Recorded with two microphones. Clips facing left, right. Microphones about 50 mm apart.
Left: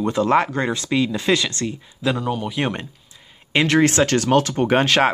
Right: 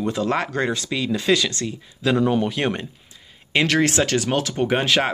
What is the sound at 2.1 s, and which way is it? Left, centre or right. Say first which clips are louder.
Speech: right 5 dB; right.